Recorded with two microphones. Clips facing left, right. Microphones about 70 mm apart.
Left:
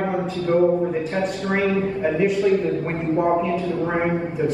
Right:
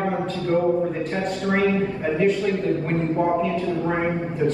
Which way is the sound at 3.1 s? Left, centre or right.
Centre.